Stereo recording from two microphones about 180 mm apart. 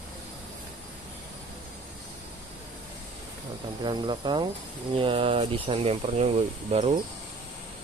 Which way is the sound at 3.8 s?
25° right (ahead or behind).